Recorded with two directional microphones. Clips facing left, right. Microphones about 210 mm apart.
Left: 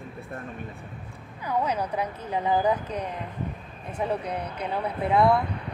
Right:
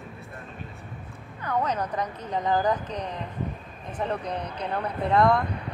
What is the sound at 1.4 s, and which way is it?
Speech, 10° left (ahead or behind).